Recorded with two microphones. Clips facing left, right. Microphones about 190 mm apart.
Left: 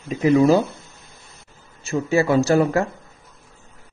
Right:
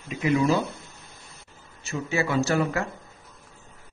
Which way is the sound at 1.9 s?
40° left (ahead or behind).